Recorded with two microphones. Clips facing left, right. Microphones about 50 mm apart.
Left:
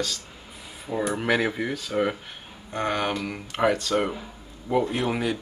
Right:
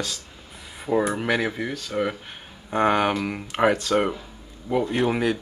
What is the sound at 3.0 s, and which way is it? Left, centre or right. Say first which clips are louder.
Speech: right 4 dB; centre.